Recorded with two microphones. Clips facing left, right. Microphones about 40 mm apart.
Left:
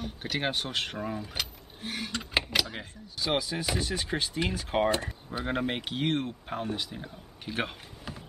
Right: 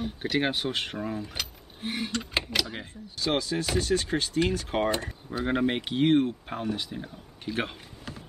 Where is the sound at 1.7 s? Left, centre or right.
Centre.